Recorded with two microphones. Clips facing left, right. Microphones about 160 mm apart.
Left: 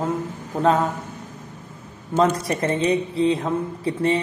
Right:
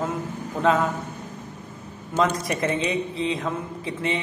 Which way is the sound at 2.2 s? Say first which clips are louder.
Left 3 dB; 35° left (ahead or behind).